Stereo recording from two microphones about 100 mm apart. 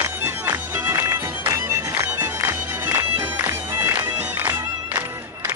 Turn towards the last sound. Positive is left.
turn(degrees=-30)  # may be behind; listen again after turning